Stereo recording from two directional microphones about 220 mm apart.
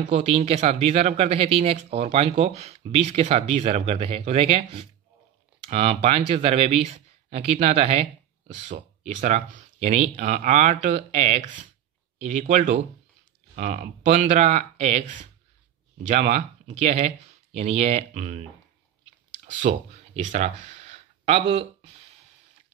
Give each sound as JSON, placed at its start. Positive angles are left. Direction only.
{"t": 0.1, "sound": "speech", "side_deg": -30}
{"t": 19.7, "sound": "speech", "side_deg": -35}